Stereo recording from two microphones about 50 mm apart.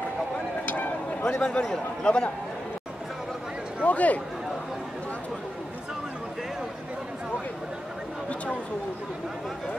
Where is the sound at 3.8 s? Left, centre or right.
Left.